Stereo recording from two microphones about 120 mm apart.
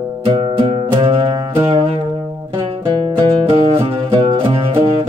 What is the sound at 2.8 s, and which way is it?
Music, 40° right (ahead or behind).